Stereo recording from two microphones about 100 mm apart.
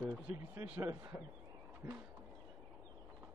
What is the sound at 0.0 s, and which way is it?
Speech, 20° right (ahead or behind).